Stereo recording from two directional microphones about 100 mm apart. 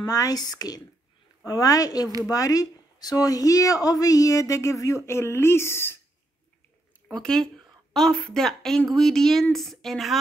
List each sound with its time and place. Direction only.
0.0 s a woman's voice: 35° left (ahead or behind)
7.1 s a woman's voice: 5° left (ahead or behind)